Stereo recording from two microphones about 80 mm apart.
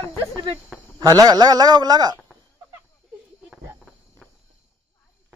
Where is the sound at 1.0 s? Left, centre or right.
Right.